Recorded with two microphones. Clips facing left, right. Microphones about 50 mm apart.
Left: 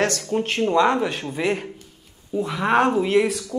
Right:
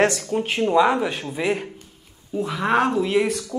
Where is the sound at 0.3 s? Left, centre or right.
Centre.